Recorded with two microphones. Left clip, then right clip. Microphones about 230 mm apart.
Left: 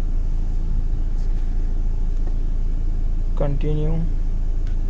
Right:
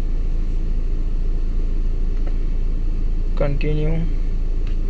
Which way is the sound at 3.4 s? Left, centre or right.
Centre.